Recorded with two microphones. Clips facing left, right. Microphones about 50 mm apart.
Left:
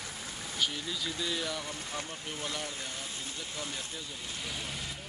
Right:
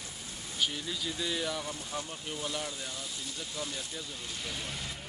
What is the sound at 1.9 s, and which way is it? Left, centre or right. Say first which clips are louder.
Speech: right 1 dB; left.